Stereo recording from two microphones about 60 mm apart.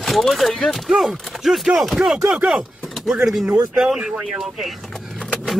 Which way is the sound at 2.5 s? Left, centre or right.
Centre.